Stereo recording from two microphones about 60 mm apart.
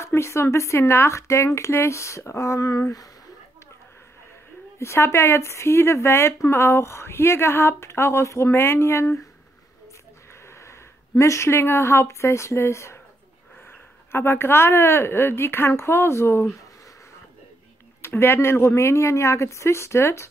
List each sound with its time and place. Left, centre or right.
0.0 s speech: left
4.7 s speech: left
8.5 s speech: left
10.4 s speech: left
18.0 s speech: left